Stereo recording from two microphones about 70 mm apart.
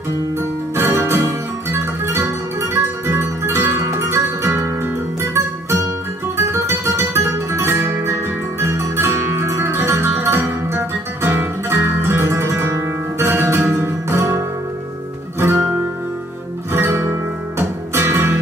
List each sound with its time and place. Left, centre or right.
0.7 s music: right
6.3 s guitar: right
13.3 s music: right
15.4 s guitar: right
16.7 s music: right